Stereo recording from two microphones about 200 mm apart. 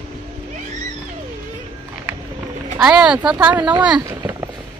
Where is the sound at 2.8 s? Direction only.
5° right (ahead or behind).